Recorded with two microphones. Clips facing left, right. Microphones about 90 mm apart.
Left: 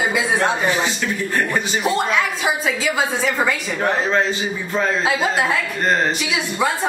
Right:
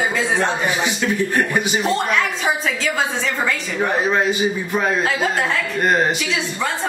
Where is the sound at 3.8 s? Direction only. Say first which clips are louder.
Right 1 dB; 15° right (ahead or behind).